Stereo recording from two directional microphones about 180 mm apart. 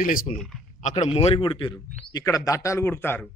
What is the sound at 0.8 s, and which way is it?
A man's voice, 35° left (ahead or behind).